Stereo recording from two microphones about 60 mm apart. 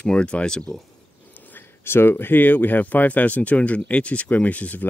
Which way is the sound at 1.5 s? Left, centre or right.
Left.